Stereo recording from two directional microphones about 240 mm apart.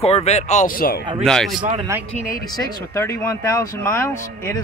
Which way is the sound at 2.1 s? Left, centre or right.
Left.